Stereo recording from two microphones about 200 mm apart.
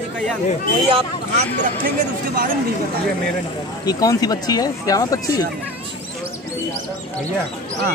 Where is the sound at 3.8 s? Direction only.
20° left (ahead or behind).